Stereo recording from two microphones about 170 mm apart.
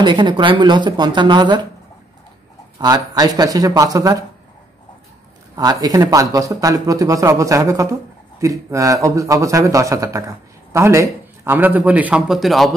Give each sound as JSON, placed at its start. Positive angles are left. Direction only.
{"t": 0.0, "sound": "a man's voice", "side_deg": -25}
{"t": 2.8, "sound": "a man's voice", "side_deg": -20}
{"t": 5.6, "sound": "a man's voice", "side_deg": -20}